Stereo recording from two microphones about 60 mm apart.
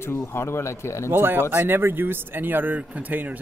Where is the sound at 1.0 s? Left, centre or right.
Right.